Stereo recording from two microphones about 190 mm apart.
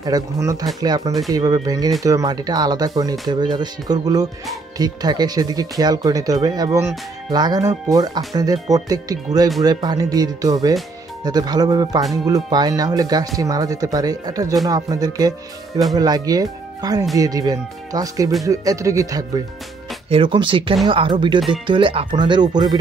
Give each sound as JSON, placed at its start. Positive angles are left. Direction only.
{"t": 0.0, "sound": "speech", "side_deg": -20}